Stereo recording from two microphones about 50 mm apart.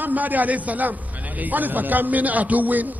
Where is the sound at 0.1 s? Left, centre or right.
Right.